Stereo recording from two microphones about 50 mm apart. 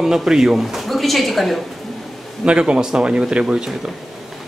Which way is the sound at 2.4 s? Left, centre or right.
Centre.